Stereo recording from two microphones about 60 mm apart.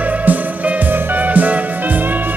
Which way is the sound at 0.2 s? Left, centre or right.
Right.